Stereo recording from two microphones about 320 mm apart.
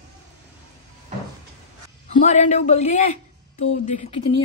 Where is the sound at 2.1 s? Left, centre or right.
Left.